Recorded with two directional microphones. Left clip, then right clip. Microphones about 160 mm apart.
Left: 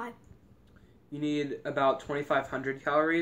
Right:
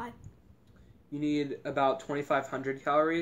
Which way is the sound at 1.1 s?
15° right (ahead or behind).